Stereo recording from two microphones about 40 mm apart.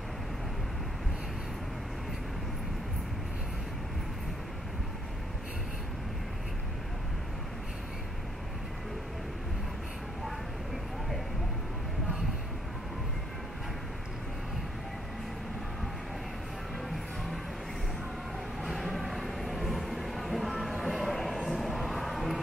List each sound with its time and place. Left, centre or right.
18.6 s vehicle: centre
18.9 s music: centre
20.8 s a sound: centre